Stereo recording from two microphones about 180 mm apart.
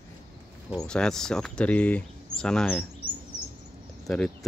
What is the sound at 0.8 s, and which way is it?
Speech, 5° left (ahead or behind).